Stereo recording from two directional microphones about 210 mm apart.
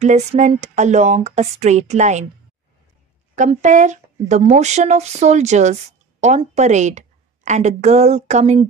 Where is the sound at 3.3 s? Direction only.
35° right (ahead or behind).